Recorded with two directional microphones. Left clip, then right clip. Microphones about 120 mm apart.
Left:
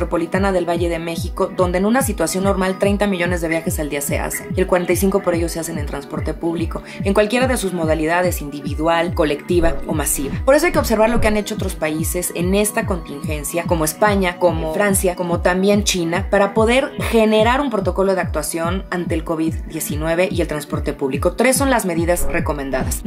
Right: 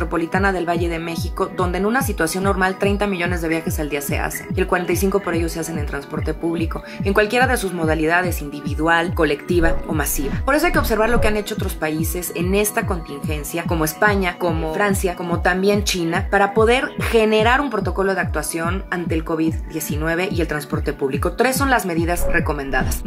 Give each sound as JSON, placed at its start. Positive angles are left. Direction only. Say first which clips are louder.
{"t": 0.0, "sound": "speech", "louder": "left 1 dB", "side_deg": 20}